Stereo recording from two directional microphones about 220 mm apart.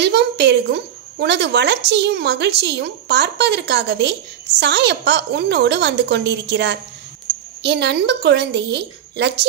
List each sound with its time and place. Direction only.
0.0 s a woman's voice: 50° right (ahead or behind)